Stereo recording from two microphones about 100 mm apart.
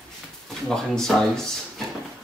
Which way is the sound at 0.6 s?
5° left (ahead or behind).